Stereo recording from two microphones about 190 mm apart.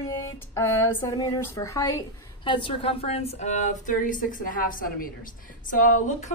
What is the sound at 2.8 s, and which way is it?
A woman's voice, 30° left (ahead or behind).